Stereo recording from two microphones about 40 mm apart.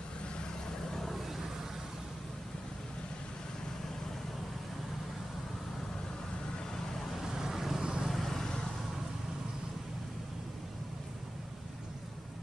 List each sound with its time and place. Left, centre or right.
0.8 s vehicle: centre
1.1 s vehicle: centre
7.3 s vehicle: centre
7.8 s vehicle: centre
8.1 s vehicle: centre